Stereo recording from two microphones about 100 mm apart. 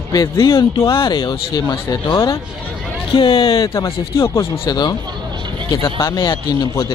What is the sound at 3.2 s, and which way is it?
Speech, 55° left (ahead or behind).